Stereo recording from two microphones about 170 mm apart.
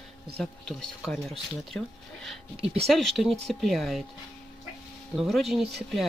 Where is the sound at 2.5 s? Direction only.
35° right (ahead or behind).